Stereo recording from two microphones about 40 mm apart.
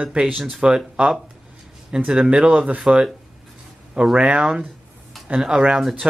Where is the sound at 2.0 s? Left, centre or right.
Centre.